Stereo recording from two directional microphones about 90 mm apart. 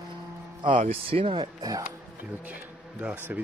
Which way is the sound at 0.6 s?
80° right.